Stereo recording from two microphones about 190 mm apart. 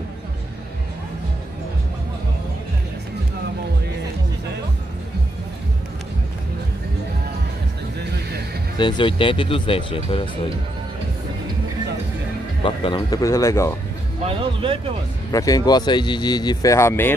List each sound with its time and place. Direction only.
8.7 s speech: 25° left (ahead or behind)
12.6 s speech: 25° left (ahead or behind)
14.2 s speech: 30° right (ahead or behind)
15.3 s speech: 20° left (ahead or behind)